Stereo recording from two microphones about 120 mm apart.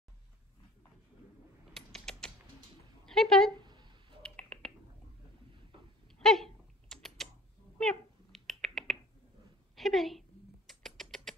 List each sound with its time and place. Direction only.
1.7 s creak: 5° left (ahead or behind)
3.1 s speech: 5° left (ahead or behind)
3.5 s a sound: 40° right (ahead or behind)
4.2 s typing: 10° left (ahead or behind)
6.2 s typing: 5° left (ahead or behind)
7.8 s cat: 5° left (ahead or behind)
9.8 s a sound: centre (ahead or behind)
10.7 s rodents: centre (ahead or behind)